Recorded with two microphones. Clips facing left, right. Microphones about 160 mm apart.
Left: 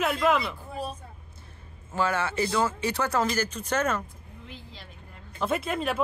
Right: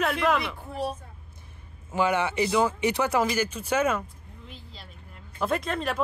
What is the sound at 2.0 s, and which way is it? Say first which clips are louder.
Speech: right 2 dB; 15° right (ahead or behind).